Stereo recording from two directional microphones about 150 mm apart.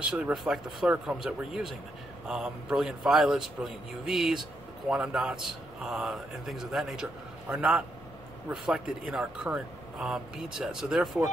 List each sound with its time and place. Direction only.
0.0 s speech: 5° right (ahead or behind)